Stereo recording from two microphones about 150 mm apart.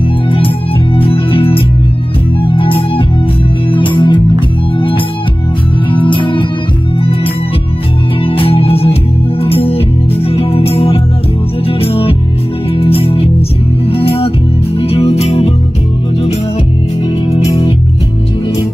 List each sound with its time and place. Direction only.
0.9 s music: 35° left (ahead or behind)
8.2 s music: 40° left (ahead or behind)